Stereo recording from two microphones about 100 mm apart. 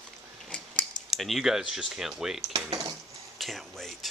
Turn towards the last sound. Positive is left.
turn(degrees=0)  # may be behind; listen again after turning